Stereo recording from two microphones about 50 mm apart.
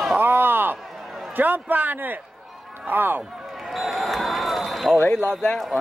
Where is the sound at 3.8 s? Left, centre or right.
Centre.